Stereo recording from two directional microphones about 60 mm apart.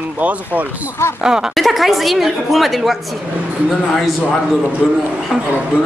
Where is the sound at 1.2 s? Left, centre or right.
Centre.